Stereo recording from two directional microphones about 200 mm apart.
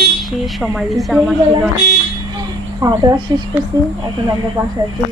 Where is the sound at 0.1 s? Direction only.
Centre (ahead or behind).